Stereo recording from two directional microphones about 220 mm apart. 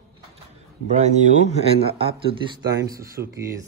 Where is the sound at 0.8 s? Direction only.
30° right (ahead or behind).